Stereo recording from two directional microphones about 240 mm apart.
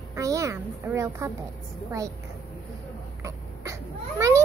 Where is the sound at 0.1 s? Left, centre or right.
Centre.